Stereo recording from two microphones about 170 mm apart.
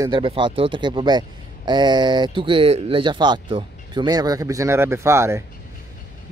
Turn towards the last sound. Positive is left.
turn(degrees=-15)  # may be behind; listen again after turning